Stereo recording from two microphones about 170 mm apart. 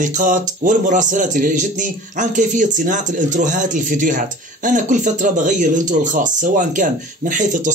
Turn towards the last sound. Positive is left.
turn(degrees=-50)  # may be behind; listen again after turning